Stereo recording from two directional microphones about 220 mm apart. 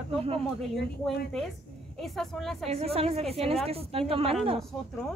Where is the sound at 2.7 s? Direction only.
25° right (ahead or behind).